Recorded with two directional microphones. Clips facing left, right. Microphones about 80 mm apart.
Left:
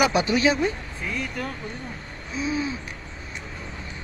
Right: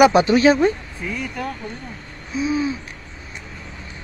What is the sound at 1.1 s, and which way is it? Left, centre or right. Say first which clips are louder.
Speech: right 3 dB; centre.